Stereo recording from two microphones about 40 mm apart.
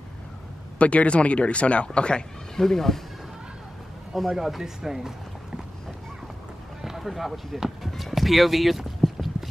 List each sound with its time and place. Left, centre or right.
0.7 s speech: left
2.5 s speech: centre
4.3 s speech: centre
6.8 s run: centre
7.1 s speech: centre